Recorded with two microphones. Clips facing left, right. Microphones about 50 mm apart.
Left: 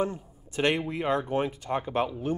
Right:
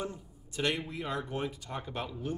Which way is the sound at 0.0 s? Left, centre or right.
Left.